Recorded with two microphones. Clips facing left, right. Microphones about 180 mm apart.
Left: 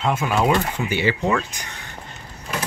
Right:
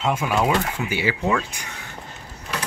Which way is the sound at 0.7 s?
10° right (ahead or behind).